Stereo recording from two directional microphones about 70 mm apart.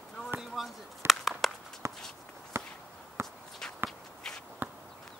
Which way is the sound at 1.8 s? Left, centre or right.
Right.